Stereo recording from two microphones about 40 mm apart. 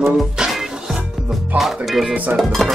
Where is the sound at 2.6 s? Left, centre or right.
Centre.